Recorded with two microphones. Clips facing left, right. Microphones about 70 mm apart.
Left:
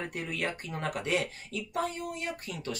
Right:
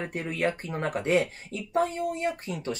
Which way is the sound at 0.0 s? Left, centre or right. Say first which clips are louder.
Right 5 dB; right.